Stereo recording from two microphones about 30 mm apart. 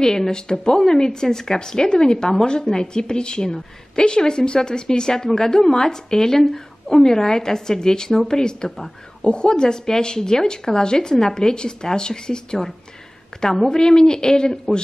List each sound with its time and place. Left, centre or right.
0.0 s speech: centre
8.6 s speech: centre
9.2 s speech: left